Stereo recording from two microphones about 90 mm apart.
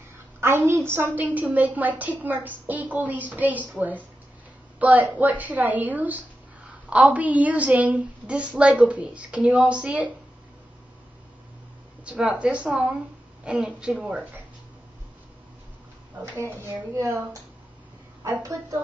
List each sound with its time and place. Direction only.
0.4 s a woman's voice: 30° right (ahead or behind)
12.0 s a woman's voice: 15° right (ahead or behind)
16.5 s a woman's voice: 30° right (ahead or behind)